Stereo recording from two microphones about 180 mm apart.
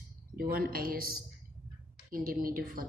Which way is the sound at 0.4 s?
55° right (ahead or behind).